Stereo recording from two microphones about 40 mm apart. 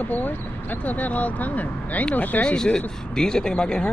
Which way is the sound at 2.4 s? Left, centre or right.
Centre.